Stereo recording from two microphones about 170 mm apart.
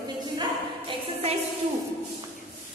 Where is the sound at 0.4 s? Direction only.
30° right (ahead or behind).